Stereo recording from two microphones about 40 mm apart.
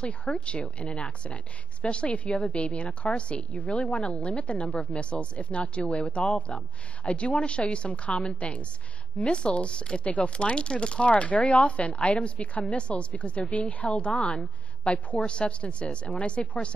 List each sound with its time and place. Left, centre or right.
0.0 s speech: left